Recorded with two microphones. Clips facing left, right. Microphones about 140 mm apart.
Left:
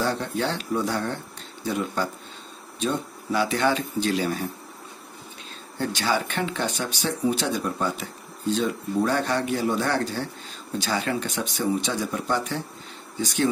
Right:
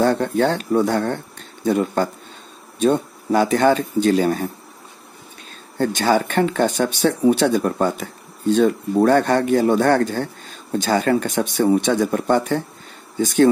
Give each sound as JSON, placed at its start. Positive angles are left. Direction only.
{"t": 0.0, "sound": "speech", "side_deg": -50}
{"t": 5.8, "sound": "speech", "side_deg": -50}